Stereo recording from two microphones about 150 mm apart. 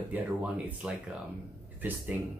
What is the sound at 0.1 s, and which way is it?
Speech, 10° right (ahead or behind).